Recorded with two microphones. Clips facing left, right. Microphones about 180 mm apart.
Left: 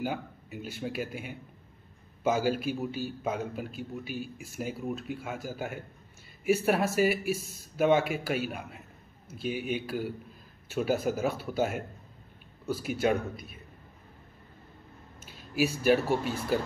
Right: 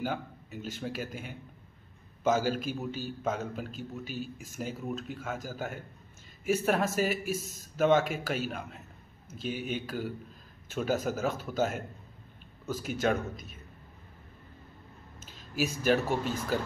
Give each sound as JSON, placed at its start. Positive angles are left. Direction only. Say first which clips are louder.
{"t": 0.0, "sound": "a man's voice", "louder": "left 1 dB", "side_deg": 10}
{"t": 7.2, "sound": "speech", "louder": "left 2 dB", "side_deg": -45}
{"t": 7.7, "sound": "a man's voice", "louder": "even", "side_deg": 10}
{"t": 15.5, "sound": "a man's voice", "louder": "left 3 dB", "side_deg": 10}